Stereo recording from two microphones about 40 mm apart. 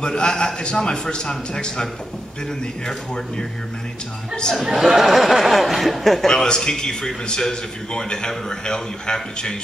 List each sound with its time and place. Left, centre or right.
0.0 s a man's voice: left
4.6 s speech: centre
6.2 s a man's voice: centre